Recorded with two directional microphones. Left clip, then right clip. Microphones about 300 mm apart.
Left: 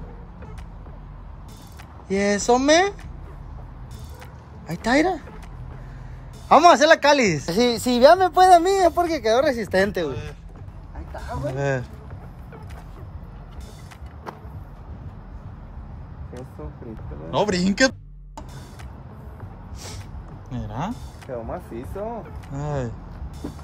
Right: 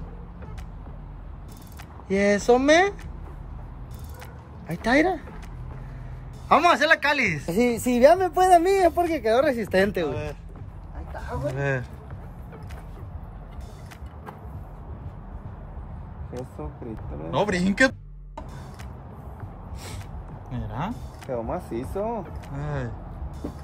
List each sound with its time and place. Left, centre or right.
2.0 s speech: centre
4.6 s speech: centre
6.5 s speech: centre
7.5 s speech: centre
8.0 s speech: centre
10.0 s speech: right
11.1 s speech: centre
16.9 s a sound: centre
20.4 s a sound: centre
21.3 s speech: right
22.2 s speech: centre